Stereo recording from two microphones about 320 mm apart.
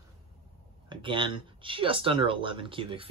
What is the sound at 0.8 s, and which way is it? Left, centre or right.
Speech, centre.